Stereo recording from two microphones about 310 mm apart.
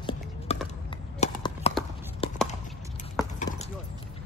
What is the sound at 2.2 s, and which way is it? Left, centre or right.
Chop, centre.